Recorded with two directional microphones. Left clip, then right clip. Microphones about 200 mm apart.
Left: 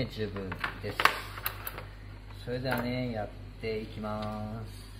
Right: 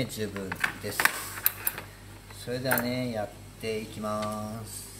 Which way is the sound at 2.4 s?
10° right (ahead or behind).